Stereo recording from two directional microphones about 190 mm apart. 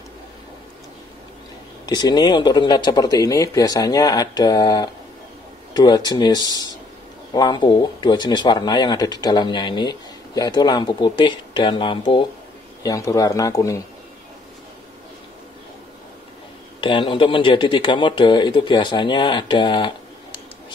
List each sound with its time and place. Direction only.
1.9 s speech: 20° left (ahead or behind)
16.8 s speech: 25° left (ahead or behind)